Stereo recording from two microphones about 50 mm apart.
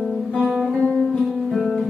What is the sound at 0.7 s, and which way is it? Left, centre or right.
Guitar, centre.